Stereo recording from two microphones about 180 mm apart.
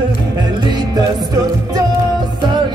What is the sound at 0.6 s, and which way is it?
Music, 25° right (ahead or behind).